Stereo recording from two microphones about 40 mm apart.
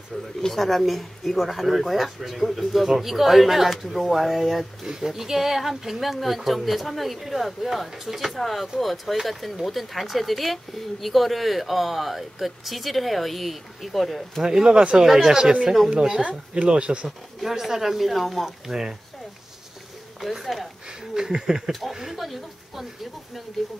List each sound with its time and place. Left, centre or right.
0.4 s speech: centre
14.4 s speech: centre
17.4 s speech: centre
18.7 s speech: centre
20.2 s speech: centre
21.1 s speech: centre